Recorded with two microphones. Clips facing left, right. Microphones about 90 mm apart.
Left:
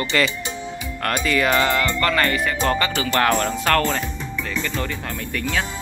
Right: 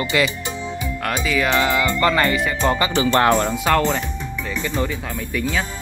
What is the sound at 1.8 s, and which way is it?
Speech, 20° right (ahead or behind).